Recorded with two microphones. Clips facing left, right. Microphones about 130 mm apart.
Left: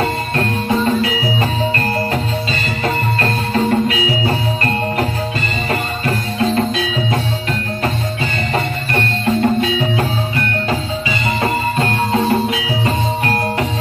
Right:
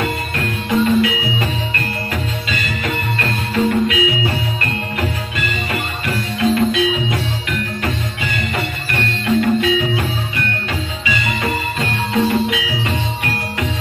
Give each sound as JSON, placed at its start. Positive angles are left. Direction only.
{"t": 0.0, "sound": "music", "side_deg": 35}
{"t": 2.5, "sound": "music", "side_deg": 35}
{"t": 8.5, "sound": "music", "side_deg": 35}